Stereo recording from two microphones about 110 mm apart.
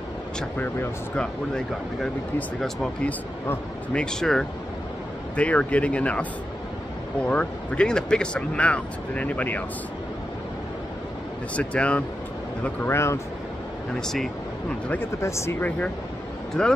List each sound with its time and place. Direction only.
1.1 s speech: 10° left (ahead or behind)
11.5 s speech: 10° left (ahead or behind)
12.6 s speech: 20° left (ahead or behind)
13.9 s speech: 5° left (ahead or behind)
14.9 s speech: 25° left (ahead or behind)
16.6 s speech: 5° left (ahead or behind)